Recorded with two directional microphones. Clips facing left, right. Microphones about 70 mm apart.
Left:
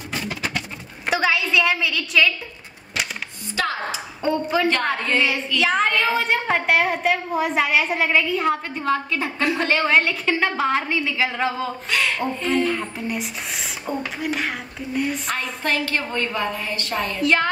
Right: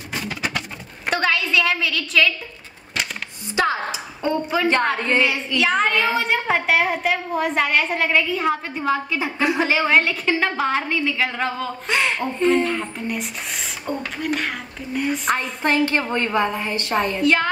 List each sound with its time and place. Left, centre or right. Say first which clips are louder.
1.0 s a sound: even; centre
3.5 s a woman's voice: right 3 dB; centre
4.2 s a woman's voice: left 1 dB; centre
4.9 s a sound: right 2 dB; centre
5.2 s a woman's voice: right 1 dB; centre
11.9 s a woman's voice: right 2 dB; right
12.4 s a woman's voice: right 4 dB; centre
15.8 s a woman's voice: right 4 dB; right
17.2 s a woman's voice: left 1 dB; centre